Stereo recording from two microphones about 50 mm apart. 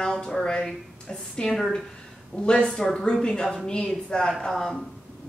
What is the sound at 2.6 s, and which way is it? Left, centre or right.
A woman's voice, centre.